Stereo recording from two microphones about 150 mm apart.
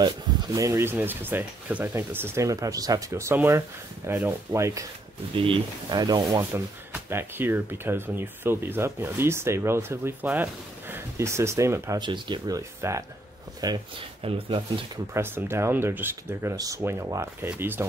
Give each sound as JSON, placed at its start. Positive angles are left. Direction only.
{"t": 0.0, "sound": "speech", "side_deg": -30}
{"t": 5.3, "sound": "speech", "side_deg": -35}
{"t": 6.5, "sound": "speech", "side_deg": -15}
{"t": 12.0, "sound": "speech", "side_deg": -30}
{"t": 15.1, "sound": "speech", "side_deg": -15}